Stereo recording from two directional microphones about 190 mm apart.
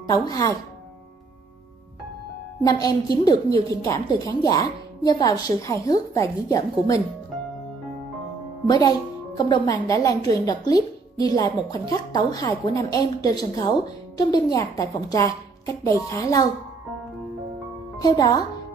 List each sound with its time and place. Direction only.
0.1 s a woman's voice: 20° left (ahead or behind)
2.6 s a woman's voice: 20° left (ahead or behind)
8.6 s a woman's voice: 20° left (ahead or behind)
18.0 s a woman's voice: 20° left (ahead or behind)